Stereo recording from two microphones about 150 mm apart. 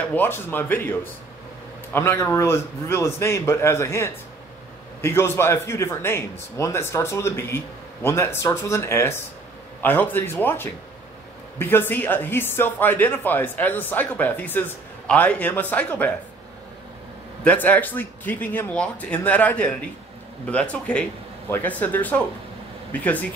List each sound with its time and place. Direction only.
0.1 s a man's voice: 15° left (ahead or behind)
17.4 s a man's voice: 10° left (ahead or behind)